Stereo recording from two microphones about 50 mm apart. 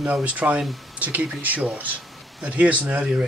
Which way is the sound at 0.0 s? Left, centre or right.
Right.